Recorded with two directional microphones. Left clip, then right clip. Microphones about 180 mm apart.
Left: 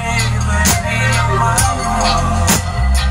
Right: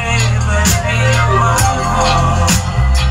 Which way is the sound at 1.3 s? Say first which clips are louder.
Right 2 dB; 20° left (ahead or behind).